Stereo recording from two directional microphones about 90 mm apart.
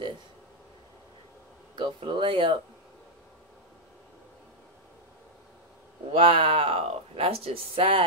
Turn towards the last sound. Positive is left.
turn(degrees=-90)